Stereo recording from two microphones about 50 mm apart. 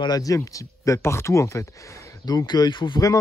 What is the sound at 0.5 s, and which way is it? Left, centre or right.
Speech, left.